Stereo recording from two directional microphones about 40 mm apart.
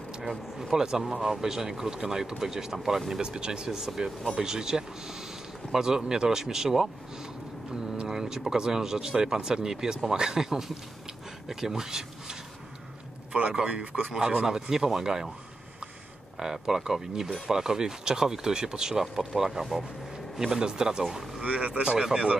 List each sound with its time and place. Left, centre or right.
0.6 s speech: centre
3.2 s speech: right
8.0 s speech: centre
13.5 s speech: right
14.4 s speech: centre
16.3 s speech: centre
21.4 s speech: right